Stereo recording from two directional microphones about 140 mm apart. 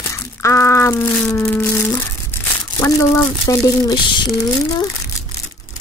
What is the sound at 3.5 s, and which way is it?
Speech, 30° left (ahead or behind).